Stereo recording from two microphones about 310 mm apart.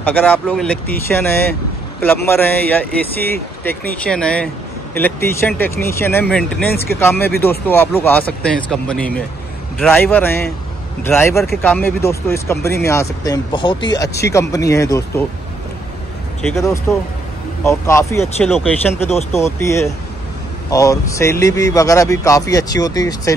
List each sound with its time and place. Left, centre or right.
0.0 s speech: centre
16.5 s speech: centre